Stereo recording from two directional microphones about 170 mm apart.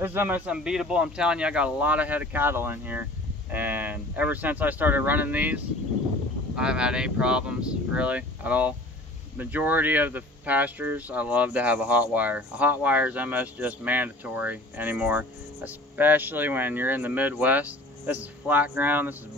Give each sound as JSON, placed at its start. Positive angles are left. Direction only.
{"t": 0.0, "sound": "speech", "side_deg": -10}